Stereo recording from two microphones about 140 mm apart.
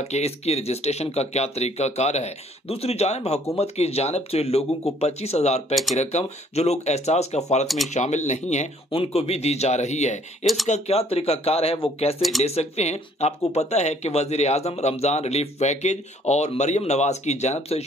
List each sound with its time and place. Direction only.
0.0 s speech: 50° left (ahead or behind)
7.6 s speech: centre (ahead or behind)
7.9 s speech: 55° left (ahead or behind)
10.4 s speech: centre (ahead or behind)
10.7 s speech: 45° left (ahead or behind)
12.2 s speech: centre (ahead or behind)
12.4 s speech: 50° left (ahead or behind)